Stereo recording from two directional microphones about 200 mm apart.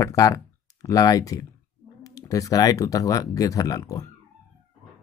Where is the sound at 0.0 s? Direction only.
15° left (ahead or behind).